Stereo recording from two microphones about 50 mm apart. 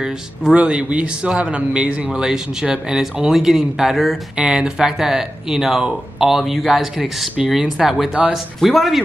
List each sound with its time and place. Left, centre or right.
0.0 s speech: centre
4.4 s speech: centre